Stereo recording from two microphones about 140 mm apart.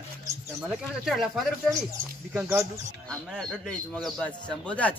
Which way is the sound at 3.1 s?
Centre (ahead or behind).